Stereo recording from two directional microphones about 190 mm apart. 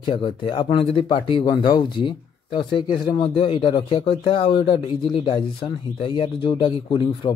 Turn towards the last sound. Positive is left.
turn(degrees=25)  # may be behind; listen again after turning